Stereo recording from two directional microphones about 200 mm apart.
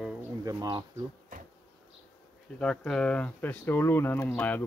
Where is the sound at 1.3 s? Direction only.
45° right (ahead or behind).